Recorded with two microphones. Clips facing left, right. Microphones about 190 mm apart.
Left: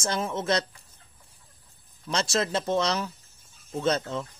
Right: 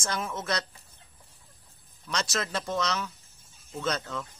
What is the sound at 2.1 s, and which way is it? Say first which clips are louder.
Speech: left 5 dB; 30° left (ahead or behind).